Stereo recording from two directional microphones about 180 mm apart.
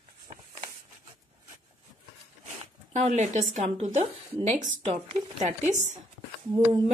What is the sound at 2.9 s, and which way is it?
A woman's voice, 40° right (ahead or behind).